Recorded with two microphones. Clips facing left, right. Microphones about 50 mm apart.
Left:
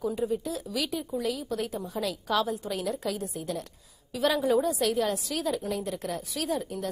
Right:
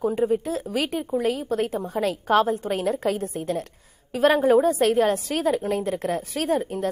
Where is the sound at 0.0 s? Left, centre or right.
Right.